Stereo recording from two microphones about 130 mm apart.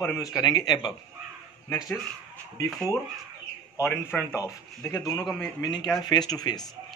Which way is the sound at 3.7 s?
20° left (ahead or behind).